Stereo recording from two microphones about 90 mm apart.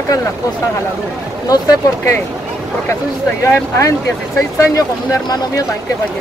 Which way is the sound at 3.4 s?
35° left (ahead or behind).